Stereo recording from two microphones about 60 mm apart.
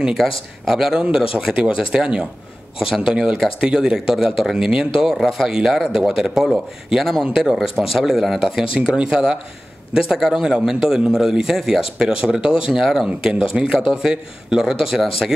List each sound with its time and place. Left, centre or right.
0.2 s speech: centre
8.7 s speech: centre